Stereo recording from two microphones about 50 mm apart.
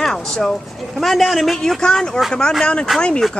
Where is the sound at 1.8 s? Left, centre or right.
Centre.